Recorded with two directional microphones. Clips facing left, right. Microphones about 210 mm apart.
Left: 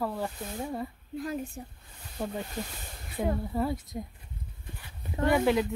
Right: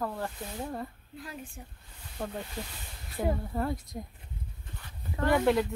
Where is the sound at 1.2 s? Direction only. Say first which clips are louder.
Left 9 dB; 45° left (ahead or behind).